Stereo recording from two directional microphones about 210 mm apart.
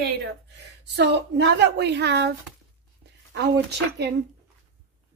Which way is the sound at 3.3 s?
55° right (ahead or behind).